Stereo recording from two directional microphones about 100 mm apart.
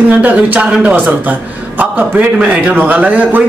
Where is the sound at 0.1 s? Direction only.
15° right (ahead or behind).